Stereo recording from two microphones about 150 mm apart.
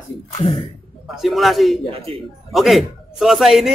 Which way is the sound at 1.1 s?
Centre (ahead or behind).